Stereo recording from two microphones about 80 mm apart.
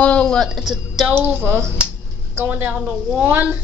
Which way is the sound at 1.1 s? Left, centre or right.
Right.